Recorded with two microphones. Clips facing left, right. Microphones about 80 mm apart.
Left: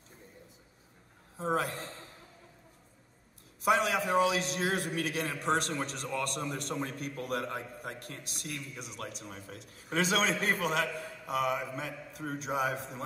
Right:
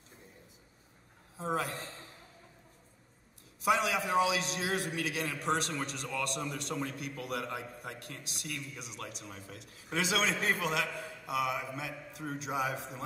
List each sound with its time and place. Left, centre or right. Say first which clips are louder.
1.4 s a man's voice: left 3 dB; left
3.6 s a man's voice: left 2 dB; left